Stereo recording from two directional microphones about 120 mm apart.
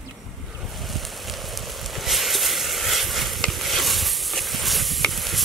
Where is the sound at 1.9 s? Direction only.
Centre (ahead or behind).